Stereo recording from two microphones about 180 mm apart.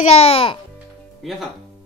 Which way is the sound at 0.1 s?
30° left (ahead or behind).